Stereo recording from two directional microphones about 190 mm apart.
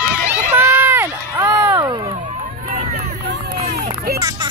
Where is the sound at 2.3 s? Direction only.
45° right (ahead or behind).